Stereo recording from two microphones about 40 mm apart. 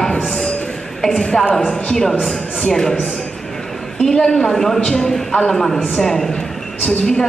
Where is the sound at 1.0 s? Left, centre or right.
Centre.